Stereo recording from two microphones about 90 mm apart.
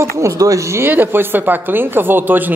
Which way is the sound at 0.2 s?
35° right (ahead or behind).